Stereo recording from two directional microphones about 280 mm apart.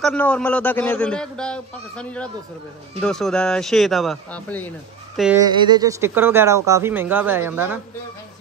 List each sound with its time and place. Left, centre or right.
0.0 s a man's voice: centre
5.4 s speech: centre